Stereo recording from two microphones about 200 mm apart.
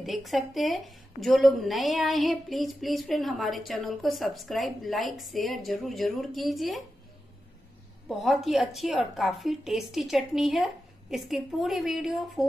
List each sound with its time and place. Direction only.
0.0 s a woman's voice: centre (ahead or behind)
8.1 s a woman's voice: centre (ahead or behind)